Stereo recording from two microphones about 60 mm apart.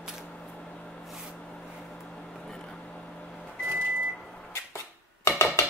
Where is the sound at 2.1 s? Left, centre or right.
Centre.